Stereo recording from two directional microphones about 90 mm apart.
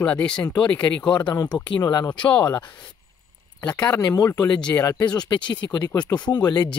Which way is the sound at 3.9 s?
35° left (ahead or behind).